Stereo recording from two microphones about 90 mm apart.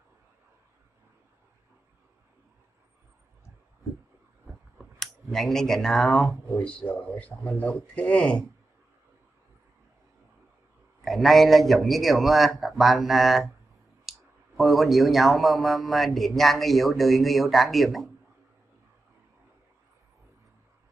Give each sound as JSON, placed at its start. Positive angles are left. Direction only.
{"t": 4.7, "sound": "speech", "side_deg": 5}
{"t": 11.1, "sound": "a man's voice", "side_deg": 0}
{"t": 14.1, "sound": "clicking", "side_deg": -5}
{"t": 14.6, "sound": "a man's voice", "side_deg": 0}